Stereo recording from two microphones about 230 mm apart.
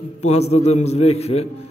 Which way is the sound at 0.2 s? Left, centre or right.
Left.